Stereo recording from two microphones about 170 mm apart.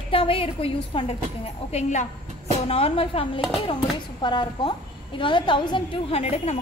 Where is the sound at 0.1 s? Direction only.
30° left (ahead or behind).